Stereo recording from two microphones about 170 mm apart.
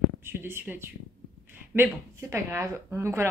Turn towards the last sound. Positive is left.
turn(degrees=-15)  # may be behind; listen again after turning